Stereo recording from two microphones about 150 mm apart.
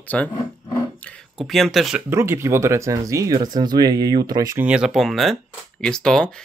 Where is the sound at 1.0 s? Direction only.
10° left (ahead or behind).